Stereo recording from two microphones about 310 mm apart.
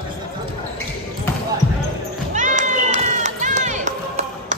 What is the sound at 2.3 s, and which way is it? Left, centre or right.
Run, right.